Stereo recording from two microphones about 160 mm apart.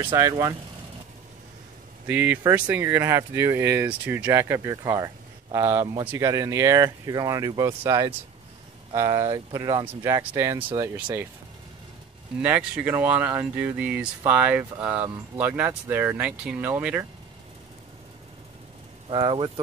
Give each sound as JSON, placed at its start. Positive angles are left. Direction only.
{"t": 0.1, "sound": "speech", "side_deg": -20}
{"t": 2.0, "sound": "speech", "side_deg": -10}
{"t": 12.4, "sound": "speech", "side_deg": -10}
{"t": 19.0, "sound": "speech", "side_deg": -30}